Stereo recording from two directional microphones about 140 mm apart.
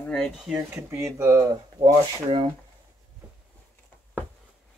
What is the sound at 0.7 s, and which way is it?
Speech, 20° right (ahead or behind).